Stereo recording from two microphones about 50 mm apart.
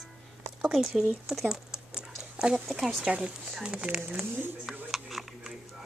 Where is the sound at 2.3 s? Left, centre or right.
Right.